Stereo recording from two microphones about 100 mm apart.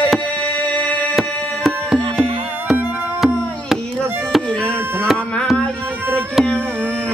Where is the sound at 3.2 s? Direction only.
5° right (ahead or behind).